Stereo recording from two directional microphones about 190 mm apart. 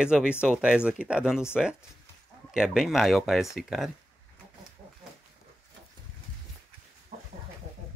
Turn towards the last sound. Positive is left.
turn(degrees=-35)  # may be behind; listen again after turning